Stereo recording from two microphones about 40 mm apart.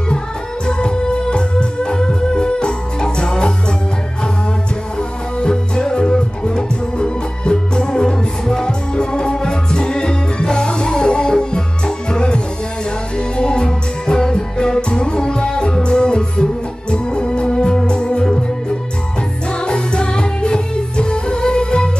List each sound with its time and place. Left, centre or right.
0.7 s music: left
5.4 s music: left
13.4 s music: left
19.6 s music: left